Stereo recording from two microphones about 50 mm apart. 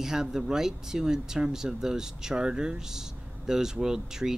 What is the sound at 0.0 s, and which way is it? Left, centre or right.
Speech, centre.